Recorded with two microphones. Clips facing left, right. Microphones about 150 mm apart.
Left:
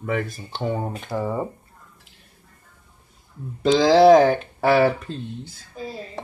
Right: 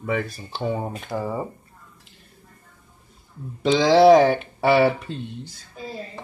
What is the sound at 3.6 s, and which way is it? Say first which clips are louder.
Speech: left 1 dB; centre (ahead or behind).